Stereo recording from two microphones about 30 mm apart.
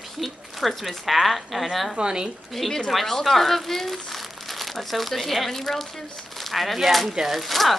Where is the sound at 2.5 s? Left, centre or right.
Centre.